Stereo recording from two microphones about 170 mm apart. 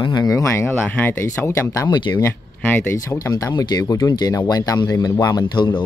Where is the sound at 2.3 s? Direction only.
10° left (ahead or behind).